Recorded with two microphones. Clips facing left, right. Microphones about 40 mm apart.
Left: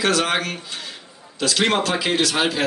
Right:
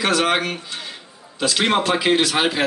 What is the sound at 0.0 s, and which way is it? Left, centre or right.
Speech, centre.